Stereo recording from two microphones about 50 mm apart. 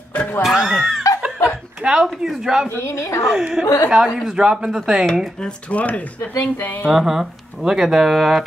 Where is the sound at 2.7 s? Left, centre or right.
Left.